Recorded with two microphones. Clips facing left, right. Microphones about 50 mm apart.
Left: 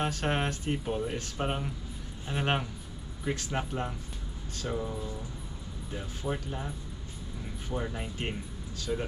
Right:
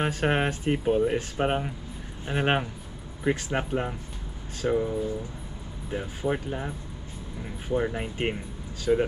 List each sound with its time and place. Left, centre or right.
0.0 s speech: right
8.9 s speech: right